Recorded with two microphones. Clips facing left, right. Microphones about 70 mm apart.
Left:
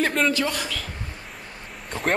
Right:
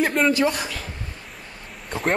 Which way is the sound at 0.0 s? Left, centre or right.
Centre.